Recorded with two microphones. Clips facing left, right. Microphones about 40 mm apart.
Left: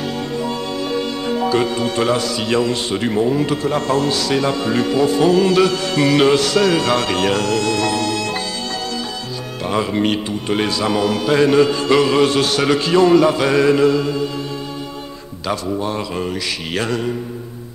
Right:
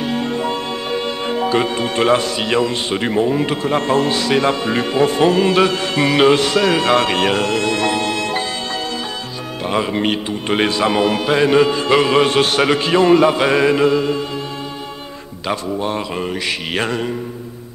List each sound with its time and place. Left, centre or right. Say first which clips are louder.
0.3 s a man's voice: right 2 dB; right
9.6 s a man's voice: even; centre
10.5 s a man's voice: right 2 dB; right
15.4 s a man's voice: even; right